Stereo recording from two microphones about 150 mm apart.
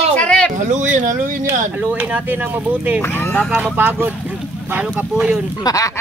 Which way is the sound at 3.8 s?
15° right (ahead or behind).